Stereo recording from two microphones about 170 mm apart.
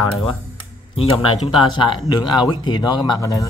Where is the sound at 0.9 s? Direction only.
35° left (ahead or behind).